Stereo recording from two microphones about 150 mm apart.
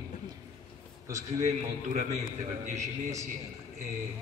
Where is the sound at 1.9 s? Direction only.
45° right (ahead or behind).